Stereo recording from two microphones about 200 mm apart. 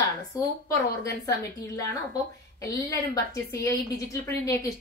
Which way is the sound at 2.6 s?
15° left (ahead or behind).